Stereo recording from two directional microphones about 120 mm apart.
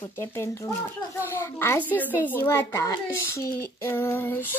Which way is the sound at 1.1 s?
20° left (ahead or behind).